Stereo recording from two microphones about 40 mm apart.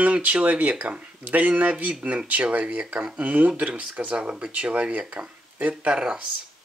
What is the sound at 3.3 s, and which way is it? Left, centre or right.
Speech, right.